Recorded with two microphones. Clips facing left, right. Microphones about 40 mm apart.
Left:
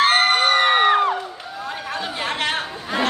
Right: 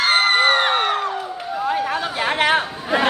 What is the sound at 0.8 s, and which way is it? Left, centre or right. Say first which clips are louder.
Crowd: left 5 dB; left.